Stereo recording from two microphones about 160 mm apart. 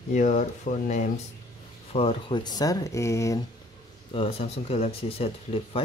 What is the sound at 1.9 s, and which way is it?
Speech, 35° left (ahead or behind).